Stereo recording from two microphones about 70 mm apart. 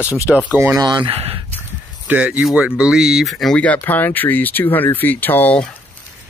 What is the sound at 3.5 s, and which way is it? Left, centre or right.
Speech, centre.